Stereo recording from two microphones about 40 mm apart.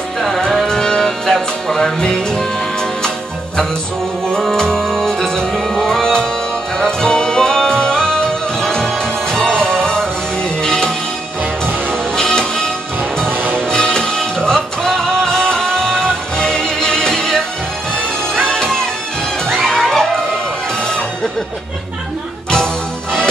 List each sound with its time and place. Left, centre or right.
0.7 s music: centre
4.3 s music: centre
13.3 s music: right
13.6 s music: centre
18.5 s music: centre
19.4 s music: centre